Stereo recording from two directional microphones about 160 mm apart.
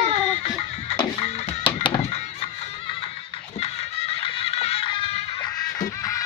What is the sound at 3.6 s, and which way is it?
Music, 40° left (ahead or behind).